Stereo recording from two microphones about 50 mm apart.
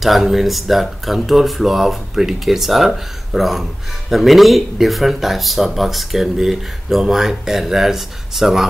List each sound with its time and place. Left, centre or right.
0.0 s speech: centre